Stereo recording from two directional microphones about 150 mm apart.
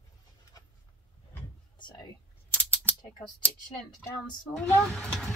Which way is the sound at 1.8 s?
30° left (ahead or behind).